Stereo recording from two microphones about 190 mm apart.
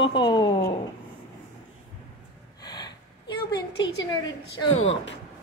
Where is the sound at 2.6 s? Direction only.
20° left (ahead or behind).